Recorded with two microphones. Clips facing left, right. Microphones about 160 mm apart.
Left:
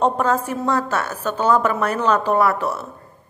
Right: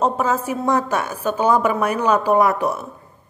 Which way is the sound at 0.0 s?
5° right (ahead or behind).